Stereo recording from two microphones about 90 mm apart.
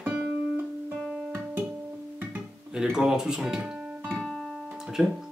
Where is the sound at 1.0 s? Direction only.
5° right (ahead or behind).